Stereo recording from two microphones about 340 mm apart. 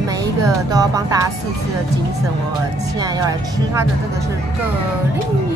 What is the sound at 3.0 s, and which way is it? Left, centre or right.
Speech, centre.